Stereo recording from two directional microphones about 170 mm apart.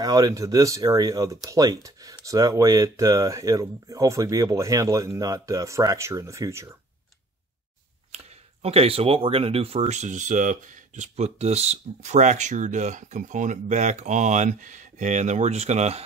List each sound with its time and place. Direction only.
0.0 s speech: 20° right (ahead or behind)
8.6 s speech: 35° right (ahead or behind)